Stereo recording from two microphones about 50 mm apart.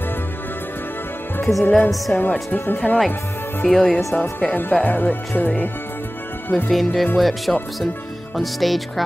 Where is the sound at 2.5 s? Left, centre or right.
Left.